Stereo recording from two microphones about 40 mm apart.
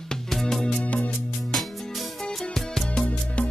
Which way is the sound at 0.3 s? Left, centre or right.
Centre.